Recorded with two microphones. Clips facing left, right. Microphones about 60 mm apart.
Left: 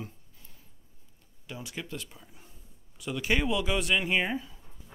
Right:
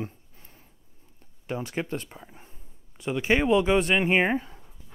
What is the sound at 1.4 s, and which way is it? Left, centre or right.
Speech, right.